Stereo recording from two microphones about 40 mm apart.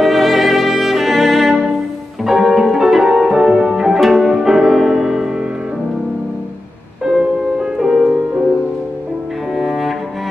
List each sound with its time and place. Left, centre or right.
0.0 s music: centre
7.1 s music: centre
9.6 s cello: centre